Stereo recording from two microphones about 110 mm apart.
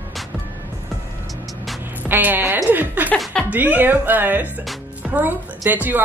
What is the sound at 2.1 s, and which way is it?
A woman's voice, 20° right (ahead or behind).